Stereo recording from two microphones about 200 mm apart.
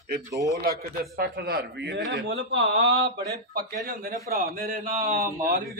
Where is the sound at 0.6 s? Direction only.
50° right (ahead or behind); by 2.9 s 65° right (ahead or behind).